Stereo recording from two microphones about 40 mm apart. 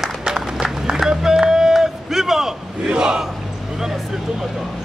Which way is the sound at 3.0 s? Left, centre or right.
Centre.